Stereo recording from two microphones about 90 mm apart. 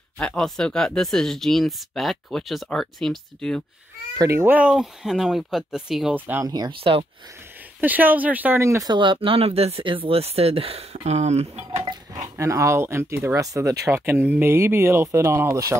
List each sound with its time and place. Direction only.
0.2 s speech: 5° left (ahead or behind)
4.4 s speech: 20° right (ahead or behind)
4.6 s speech: 5° right (ahead or behind)
6.1 s speech: 20° right (ahead or behind)
6.4 s speech: 50° right (ahead or behind)
6.7 s speech: 90° right
7.8 s speech: 20° right (ahead or behind)
8.5 s speech: 30° right (ahead or behind)
8.8 s speech: 65° right (ahead or behind); by 10.8 s 90° right
12.4 s speech: 35° right (ahead or behind); by 14.4 s 20° right (ahead or behind)
14.4 s speech: 30° right (ahead or behind)